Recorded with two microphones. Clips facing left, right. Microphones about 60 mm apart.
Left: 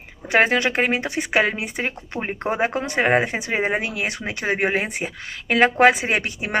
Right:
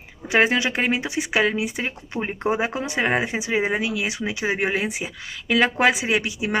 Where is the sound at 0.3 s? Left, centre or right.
Left.